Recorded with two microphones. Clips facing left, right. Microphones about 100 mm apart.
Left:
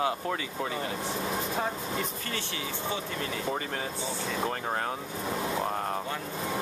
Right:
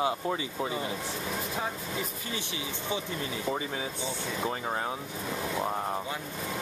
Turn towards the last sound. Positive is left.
turn(degrees=0)  # may be behind; listen again after turning